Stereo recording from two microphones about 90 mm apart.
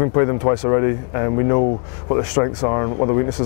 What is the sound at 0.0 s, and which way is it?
A man's voice, 25° left (ahead or behind).